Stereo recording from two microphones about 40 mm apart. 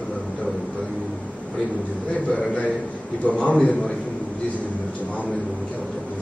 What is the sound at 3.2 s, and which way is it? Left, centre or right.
Speech, left.